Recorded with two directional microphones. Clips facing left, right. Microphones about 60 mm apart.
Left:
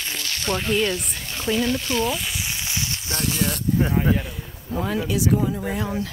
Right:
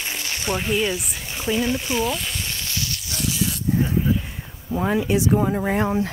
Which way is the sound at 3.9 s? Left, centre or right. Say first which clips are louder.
Left 1 dB; left.